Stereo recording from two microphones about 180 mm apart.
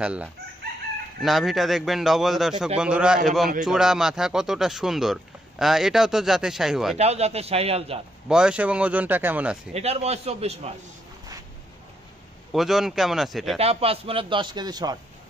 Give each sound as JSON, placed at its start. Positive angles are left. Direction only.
{"t": 0.0, "sound": "speech", "side_deg": -5}
{"t": 7.0, "sound": "a man's voice", "side_deg": -35}
{"t": 8.3, "sound": "speech", "side_deg": -5}
{"t": 9.8, "sound": "a man's voice", "side_deg": -35}
{"t": 12.5, "sound": "speech", "side_deg": 0}
{"t": 13.6, "sound": "speech", "side_deg": -35}